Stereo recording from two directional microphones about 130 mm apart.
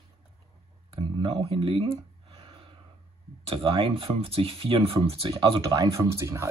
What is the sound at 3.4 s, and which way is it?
Speech, 40° right (ahead or behind).